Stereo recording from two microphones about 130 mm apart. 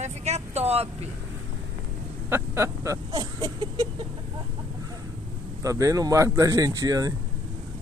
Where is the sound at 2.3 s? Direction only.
20° right (ahead or behind).